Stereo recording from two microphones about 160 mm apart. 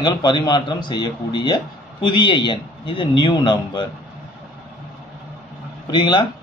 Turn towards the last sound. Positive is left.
turn(degrees=25)  # may be behind; listen again after turning